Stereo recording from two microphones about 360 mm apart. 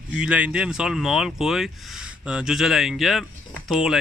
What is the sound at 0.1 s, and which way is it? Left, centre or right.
Speech, centre.